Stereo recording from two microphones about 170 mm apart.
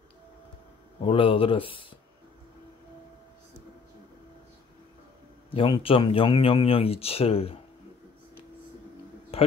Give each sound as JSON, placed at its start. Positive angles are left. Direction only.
{"t": 1.0, "sound": "speech", "side_deg": 35}
{"t": 5.5, "sound": "speech", "side_deg": 30}
{"t": 9.3, "sound": "a sound", "side_deg": 35}